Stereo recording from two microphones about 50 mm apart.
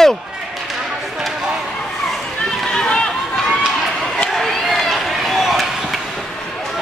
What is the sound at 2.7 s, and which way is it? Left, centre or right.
Run, centre.